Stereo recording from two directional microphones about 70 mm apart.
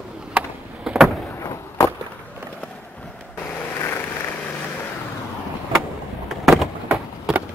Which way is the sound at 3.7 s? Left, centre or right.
Left.